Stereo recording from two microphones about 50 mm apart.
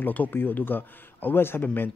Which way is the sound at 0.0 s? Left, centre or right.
Left.